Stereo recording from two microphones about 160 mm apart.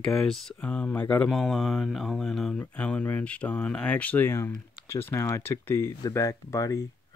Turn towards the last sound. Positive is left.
turn(degrees=20)  # may be behind; listen again after turning